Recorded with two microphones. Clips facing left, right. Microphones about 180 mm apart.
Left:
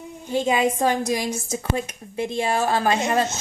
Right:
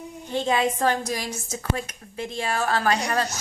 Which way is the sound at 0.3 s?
10° left (ahead or behind).